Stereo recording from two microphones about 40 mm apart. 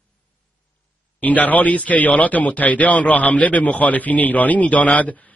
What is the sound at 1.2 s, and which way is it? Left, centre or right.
A man's voice, left.